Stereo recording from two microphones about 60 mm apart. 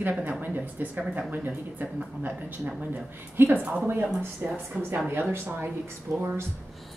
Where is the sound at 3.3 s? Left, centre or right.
Right.